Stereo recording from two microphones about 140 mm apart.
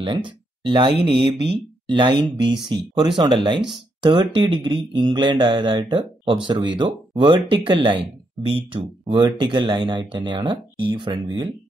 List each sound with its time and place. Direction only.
0.0 s speech: 35° right (ahead or behind)